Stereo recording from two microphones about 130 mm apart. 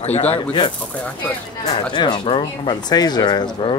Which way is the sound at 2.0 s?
35° left (ahead or behind).